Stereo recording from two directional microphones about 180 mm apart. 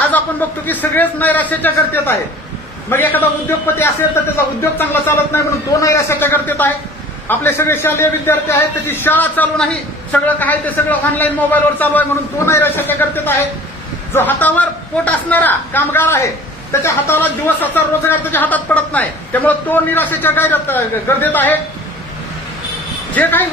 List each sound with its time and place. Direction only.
0.1 s a man's voice: 10° left (ahead or behind)
23.1 s a man's voice: 10° left (ahead or behind)